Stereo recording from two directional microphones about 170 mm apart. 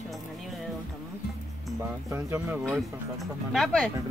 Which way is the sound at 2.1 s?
15° right (ahead or behind).